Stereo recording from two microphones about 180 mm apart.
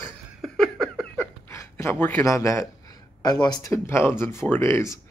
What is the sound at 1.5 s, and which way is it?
A man's voice, 15° left (ahead or behind).